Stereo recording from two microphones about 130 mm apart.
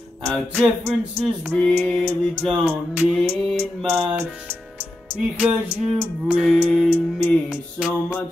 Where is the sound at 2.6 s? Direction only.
15° right (ahead or behind).